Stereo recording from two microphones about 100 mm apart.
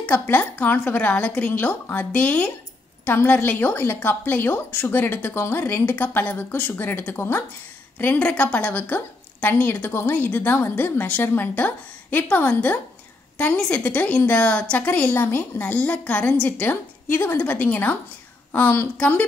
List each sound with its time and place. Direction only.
0.0 s a woman's voice: 15° left (ahead or behind)